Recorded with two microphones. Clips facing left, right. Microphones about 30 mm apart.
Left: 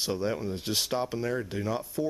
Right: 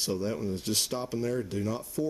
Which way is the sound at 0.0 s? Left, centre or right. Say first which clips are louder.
Left 1 dB; centre.